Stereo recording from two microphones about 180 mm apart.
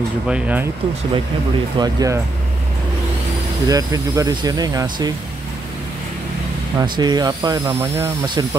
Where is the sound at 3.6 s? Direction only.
20° right (ahead or behind).